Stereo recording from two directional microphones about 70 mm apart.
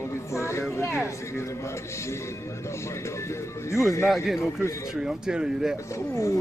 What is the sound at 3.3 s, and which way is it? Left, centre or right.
Speech, left.